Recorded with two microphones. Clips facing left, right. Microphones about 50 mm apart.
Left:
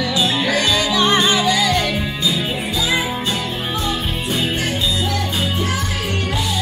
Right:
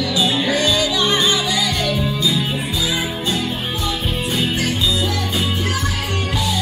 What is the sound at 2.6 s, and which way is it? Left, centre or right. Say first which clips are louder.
Music: left 2 dB; left.